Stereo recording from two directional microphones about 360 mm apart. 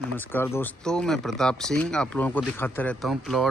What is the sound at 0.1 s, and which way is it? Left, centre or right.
Speech, centre.